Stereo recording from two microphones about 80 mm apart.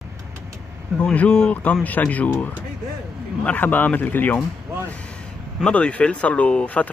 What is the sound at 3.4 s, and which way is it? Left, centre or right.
Speech, left.